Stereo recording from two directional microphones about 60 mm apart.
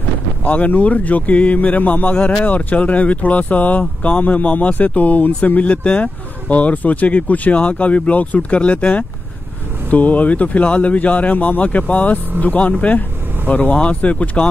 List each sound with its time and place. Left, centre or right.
0.4 s speech: left